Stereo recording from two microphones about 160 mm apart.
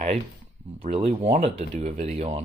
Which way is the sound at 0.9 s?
40° right (ahead or behind).